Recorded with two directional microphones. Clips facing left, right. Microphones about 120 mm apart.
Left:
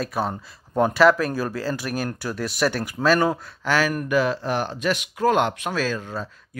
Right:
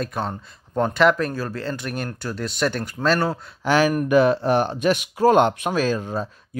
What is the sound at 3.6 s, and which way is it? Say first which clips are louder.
Speech: right 4 dB; 15° right (ahead or behind).